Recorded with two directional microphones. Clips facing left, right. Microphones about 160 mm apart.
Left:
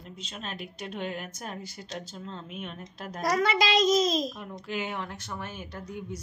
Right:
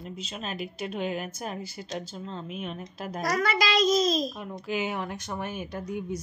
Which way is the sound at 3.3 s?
25° left (ahead or behind).